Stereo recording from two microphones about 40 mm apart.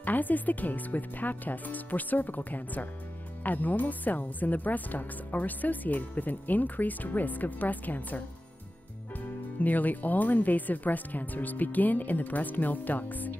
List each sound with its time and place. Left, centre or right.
0.0 s speech: left
9.6 s speech: left